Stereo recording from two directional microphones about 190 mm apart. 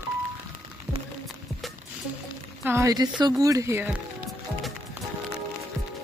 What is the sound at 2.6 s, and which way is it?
Speech, 15° right (ahead or behind).